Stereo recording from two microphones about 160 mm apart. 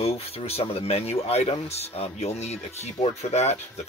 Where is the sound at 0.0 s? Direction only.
40° left (ahead or behind).